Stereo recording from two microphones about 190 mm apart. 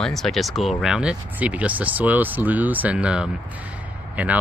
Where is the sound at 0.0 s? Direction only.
Centre (ahead or behind).